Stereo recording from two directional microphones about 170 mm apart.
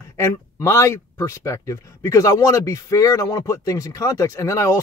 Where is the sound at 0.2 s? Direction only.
15° left (ahead or behind).